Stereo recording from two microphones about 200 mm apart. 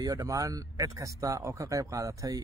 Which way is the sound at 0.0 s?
20° right (ahead or behind).